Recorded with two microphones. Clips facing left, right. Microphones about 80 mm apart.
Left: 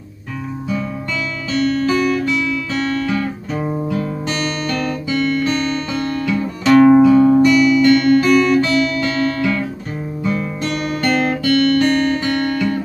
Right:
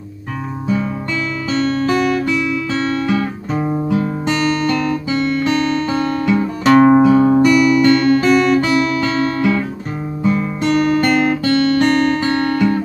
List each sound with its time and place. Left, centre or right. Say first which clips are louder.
1.5 s guitar: even; right
6.4 s music: left 1 dB; right
7.3 s music: even; centre
7.8 s guitar: even; right
10.6 s music: right 7 dB; right
11.4 s guitar: left 3 dB; right